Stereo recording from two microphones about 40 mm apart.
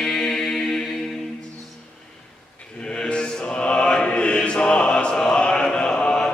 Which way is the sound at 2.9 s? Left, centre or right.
Left.